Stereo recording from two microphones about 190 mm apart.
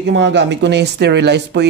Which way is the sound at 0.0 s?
70° right (ahead or behind).